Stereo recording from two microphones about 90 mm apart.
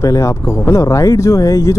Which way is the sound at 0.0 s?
35° left (ahead or behind).